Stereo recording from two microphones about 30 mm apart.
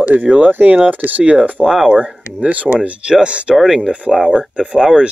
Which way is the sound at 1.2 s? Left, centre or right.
Right.